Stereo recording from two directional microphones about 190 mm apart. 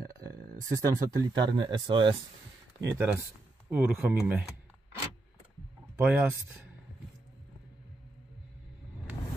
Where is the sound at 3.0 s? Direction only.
10° right (ahead or behind).